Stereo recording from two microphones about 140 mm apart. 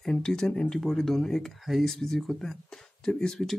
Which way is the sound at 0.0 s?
5° left (ahead or behind).